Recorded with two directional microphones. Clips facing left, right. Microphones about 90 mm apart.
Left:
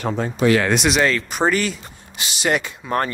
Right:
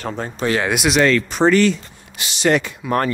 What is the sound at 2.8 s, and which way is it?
Speech, 30° left (ahead or behind).